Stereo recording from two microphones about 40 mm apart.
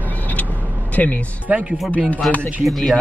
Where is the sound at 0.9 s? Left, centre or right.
Left.